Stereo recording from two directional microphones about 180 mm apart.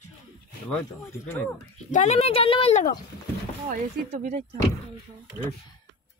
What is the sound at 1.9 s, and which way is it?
Speech, 40° left (ahead or behind).